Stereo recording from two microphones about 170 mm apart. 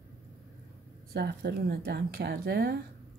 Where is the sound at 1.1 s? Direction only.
70° right (ahead or behind).